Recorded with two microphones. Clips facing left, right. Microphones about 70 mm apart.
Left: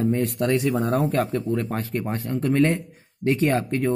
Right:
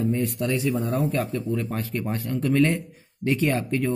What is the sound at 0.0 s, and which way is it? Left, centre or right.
Speech, left.